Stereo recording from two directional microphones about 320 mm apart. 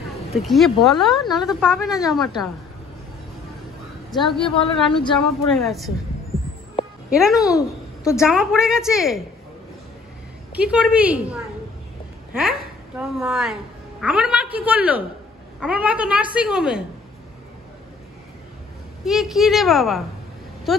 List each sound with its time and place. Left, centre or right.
0.1 s a woman's voice: centre
4.1 s a woman's voice: centre
4.4 s a woman's voice: centre
5.1 s a woman's voice: centre
7.1 s a child's voice: centre
7.5 s a sound: centre
8.2 s a woman's voice: centre
10.5 s a woman's voice: centre
12.4 s a woman's voice: centre
19.0 s a woman's voice: centre